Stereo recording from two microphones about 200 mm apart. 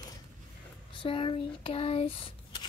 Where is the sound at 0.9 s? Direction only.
25° left (ahead or behind).